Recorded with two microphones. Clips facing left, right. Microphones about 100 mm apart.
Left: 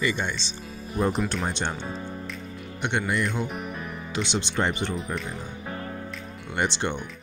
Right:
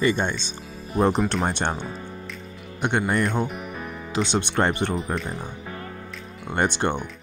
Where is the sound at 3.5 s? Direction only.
Centre (ahead or behind).